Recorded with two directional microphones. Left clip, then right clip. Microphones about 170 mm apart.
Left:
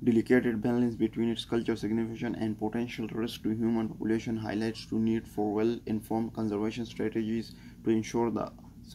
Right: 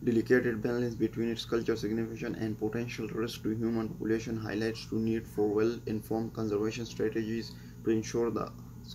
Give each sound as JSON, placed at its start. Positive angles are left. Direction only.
{"t": 0.0, "sound": "speech", "side_deg": 35}